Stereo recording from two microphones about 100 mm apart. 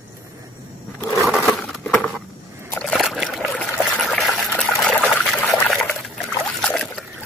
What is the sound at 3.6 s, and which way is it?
Trickle, 10° left (ahead or behind).